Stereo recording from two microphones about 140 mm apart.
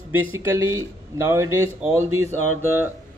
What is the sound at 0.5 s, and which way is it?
Speech, 15° right (ahead or behind).